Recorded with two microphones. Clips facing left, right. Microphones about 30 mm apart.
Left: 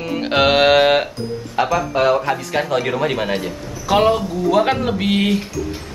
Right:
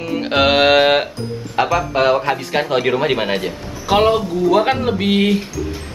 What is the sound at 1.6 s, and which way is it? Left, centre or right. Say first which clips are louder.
Speech: right 1 dB; centre.